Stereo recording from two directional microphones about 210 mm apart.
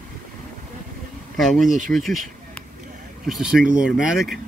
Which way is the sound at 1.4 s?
Centre (ahead or behind).